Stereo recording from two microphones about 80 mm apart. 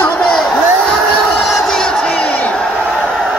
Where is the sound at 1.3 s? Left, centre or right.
Centre.